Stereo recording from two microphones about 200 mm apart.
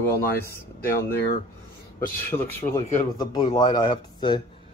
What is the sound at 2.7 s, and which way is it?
Speech, 20° left (ahead or behind).